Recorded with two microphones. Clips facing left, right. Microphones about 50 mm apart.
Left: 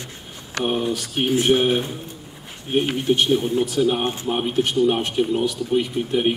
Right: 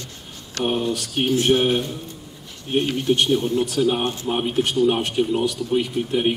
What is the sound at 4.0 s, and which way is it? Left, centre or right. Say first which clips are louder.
Speech: even; left.